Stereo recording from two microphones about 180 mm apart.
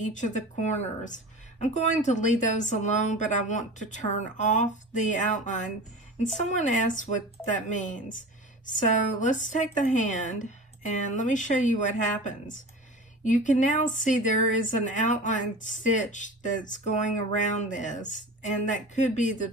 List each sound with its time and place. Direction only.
0.0 s speech: 45° left (ahead or behind)